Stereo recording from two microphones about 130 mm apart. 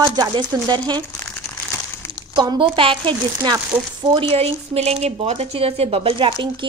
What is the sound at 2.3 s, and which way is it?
A woman's voice, 35° right (ahead or behind).